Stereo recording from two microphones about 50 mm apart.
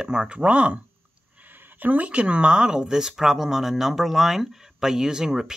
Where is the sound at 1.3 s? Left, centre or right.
Right.